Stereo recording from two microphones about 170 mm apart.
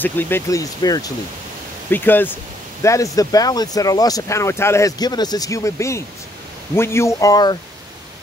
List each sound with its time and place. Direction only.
0.0 s speech: 10° left (ahead or behind)